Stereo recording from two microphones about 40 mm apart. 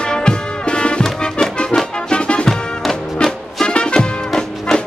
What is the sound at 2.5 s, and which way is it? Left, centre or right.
Music, centre.